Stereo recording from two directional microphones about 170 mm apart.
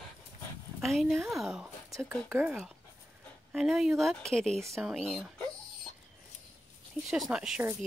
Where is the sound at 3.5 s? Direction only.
Centre (ahead or behind).